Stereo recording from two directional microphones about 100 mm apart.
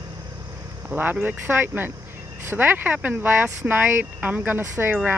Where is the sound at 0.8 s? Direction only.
20° right (ahead or behind).